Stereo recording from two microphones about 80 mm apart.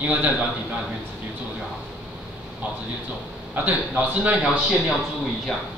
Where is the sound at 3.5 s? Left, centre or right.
Right.